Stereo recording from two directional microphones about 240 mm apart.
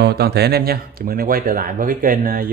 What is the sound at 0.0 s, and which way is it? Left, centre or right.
Speech, right.